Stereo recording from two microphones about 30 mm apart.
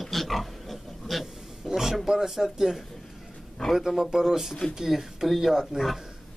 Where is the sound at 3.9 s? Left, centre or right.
Centre.